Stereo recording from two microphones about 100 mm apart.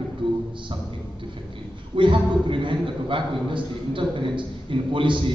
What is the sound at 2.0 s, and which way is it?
A man's voice, 55° right (ahead or behind).